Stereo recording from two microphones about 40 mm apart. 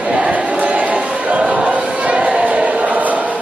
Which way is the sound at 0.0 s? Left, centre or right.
Right.